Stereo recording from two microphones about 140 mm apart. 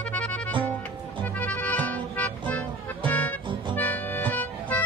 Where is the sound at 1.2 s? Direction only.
10° left (ahead or behind).